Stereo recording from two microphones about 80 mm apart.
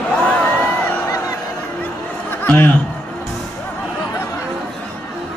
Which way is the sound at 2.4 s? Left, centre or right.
Left.